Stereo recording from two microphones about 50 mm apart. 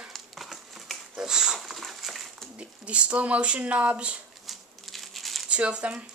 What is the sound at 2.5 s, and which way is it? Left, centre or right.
Speech, right.